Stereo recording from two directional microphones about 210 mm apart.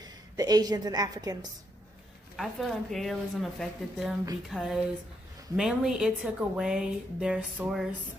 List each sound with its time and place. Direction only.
0.0 s a woman's voice: 20° right (ahead or behind)
2.3 s a woman's voice: centre (ahead or behind)